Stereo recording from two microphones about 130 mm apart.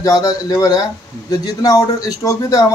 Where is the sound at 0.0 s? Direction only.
30° left (ahead or behind).